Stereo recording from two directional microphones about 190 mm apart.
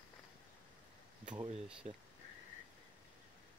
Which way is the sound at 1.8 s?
35° right (ahead or behind).